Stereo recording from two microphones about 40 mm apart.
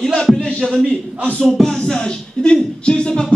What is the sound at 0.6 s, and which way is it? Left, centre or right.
Speech, centre.